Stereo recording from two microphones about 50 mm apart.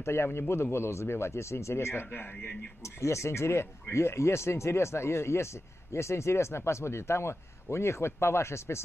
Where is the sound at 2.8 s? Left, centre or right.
Left.